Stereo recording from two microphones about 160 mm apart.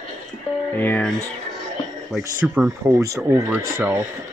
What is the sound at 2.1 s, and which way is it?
Speech, 5° right (ahead or behind).